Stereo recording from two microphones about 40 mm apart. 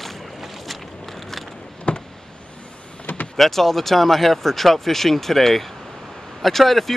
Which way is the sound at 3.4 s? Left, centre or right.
Centre.